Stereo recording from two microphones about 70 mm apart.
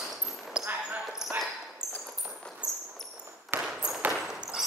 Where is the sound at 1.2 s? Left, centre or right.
Centre.